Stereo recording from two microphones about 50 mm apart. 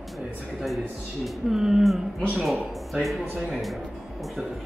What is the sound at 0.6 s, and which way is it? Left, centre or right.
Speech, centre.